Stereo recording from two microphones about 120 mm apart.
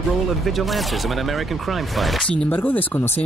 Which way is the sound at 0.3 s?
Centre (ahead or behind).